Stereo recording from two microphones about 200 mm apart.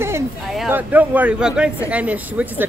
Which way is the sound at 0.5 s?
5° right (ahead or behind).